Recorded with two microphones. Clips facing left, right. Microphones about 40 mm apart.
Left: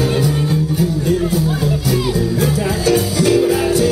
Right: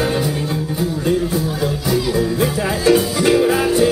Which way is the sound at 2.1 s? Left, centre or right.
Centre.